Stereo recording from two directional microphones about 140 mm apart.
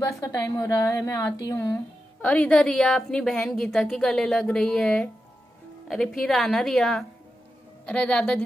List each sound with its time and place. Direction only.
0.2 s a woman's voice: 25° left (ahead or behind)
2.2 s a woman's voice: 10° left (ahead or behind)